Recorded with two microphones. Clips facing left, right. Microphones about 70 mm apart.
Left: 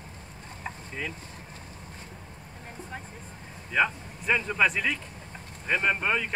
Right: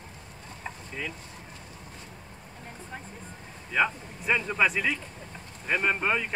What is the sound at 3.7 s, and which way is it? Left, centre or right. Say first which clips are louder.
Speech: even; centre.